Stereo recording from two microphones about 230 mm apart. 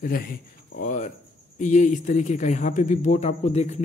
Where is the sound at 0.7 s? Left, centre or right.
Left.